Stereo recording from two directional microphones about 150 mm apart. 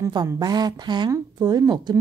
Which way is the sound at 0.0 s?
25° right (ahead or behind).